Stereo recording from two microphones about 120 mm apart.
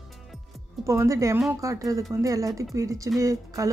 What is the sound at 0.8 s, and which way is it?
A woman's voice, 25° right (ahead or behind).